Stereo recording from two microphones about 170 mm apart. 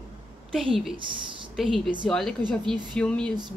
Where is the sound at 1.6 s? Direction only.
Centre (ahead or behind).